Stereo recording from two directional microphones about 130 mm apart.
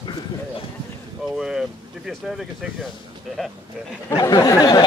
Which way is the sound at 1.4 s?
5° right (ahead or behind).